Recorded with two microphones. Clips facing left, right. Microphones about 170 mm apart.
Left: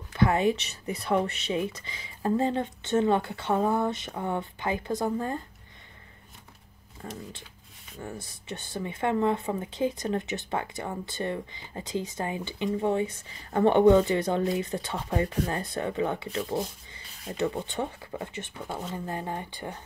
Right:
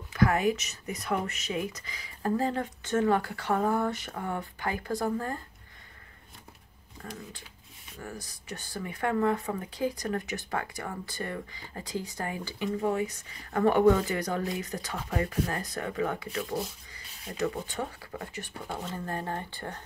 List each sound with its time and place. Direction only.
0.1 s speech: 25° left (ahead or behind)
7.0 s speech: 25° left (ahead or behind)